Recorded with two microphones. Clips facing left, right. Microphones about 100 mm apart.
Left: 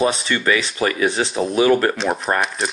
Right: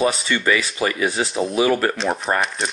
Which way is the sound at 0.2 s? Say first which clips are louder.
Even; 35° left (ahead or behind).